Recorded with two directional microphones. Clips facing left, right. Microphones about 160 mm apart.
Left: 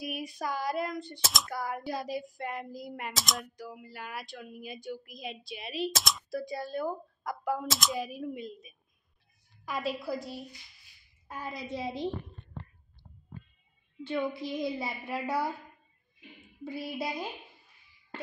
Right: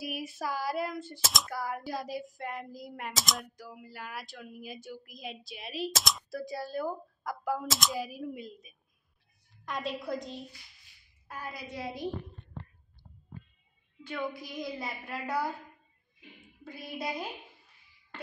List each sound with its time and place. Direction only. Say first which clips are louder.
0.0 s speech: even; 5° right (ahead or behind)
11.3 s a woman's voice: left 3 dB; 20° left (ahead or behind)
14.0 s a woman's voice: left 4 dB; 25° left (ahead or behind)
14.8 s speech: left 3 dB; centre (ahead or behind)
16.6 s speech: left 3 dB; centre (ahead or behind)